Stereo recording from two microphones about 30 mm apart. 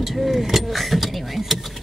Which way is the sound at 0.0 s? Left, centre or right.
Centre.